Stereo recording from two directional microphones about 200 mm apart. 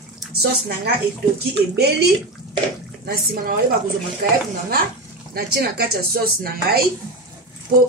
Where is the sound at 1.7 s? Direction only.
55° right (ahead or behind).